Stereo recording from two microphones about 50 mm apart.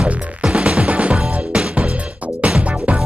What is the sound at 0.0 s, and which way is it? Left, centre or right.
Music, right.